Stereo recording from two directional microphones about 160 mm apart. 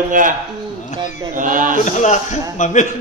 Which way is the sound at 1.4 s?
55° right (ahead or behind).